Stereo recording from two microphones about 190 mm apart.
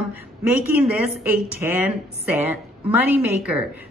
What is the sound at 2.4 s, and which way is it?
A woman's voice, 10° right (ahead or behind).